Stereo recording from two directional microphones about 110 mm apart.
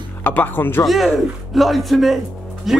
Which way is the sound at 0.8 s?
Centre (ahead or behind).